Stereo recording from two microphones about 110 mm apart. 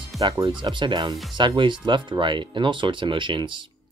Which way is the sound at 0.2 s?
40° right (ahead or behind).